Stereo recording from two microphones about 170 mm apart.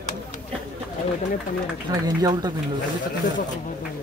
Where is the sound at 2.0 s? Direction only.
25° right (ahead or behind).